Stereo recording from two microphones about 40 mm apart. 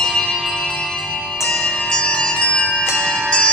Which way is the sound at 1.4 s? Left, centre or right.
Centre.